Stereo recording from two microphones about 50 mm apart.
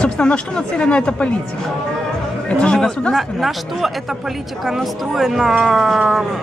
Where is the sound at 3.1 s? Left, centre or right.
Centre.